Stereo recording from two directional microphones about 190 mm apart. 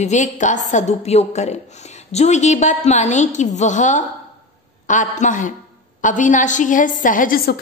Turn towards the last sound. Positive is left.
turn(degrees=45)  # may be behind; listen again after turning